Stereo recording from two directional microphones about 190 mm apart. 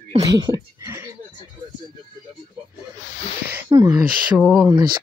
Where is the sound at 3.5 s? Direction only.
20° right (ahead or behind).